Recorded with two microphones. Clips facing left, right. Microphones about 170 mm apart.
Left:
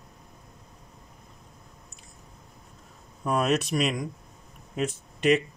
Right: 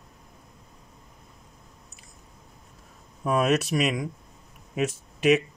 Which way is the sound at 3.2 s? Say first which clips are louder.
Right 2 dB; centre (ahead or behind).